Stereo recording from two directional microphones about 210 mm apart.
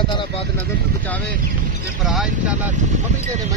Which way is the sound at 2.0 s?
5° right (ahead or behind).